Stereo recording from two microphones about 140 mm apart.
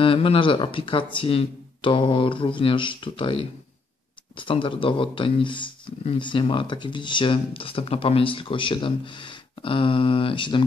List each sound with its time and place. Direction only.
0.0 s speech: 40° left (ahead or behind)